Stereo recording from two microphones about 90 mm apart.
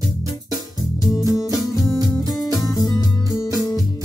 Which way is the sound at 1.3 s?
40° left (ahead or behind).